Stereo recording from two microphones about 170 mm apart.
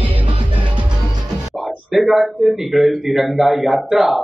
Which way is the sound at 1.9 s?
Centre (ahead or behind).